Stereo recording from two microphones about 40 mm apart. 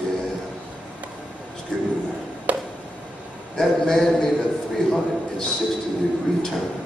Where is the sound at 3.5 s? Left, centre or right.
Centre.